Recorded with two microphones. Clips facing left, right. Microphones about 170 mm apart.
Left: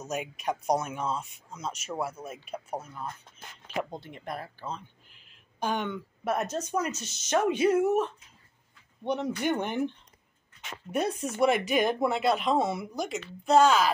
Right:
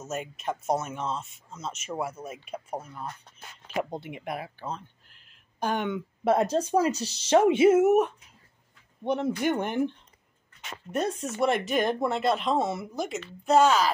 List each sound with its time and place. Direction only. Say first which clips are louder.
0.0 s speech: even; centre (ahead or behind)
6.2 s speech: right 6 dB; 30° right (ahead or behind)
9.0 s speech: right 3 dB; 5° right (ahead or behind)